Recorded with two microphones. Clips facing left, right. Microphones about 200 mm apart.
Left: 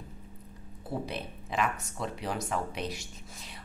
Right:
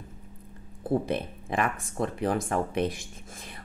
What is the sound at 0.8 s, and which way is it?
Speech, 50° right (ahead or behind).